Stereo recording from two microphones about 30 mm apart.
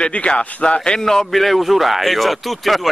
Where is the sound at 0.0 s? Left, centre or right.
Left.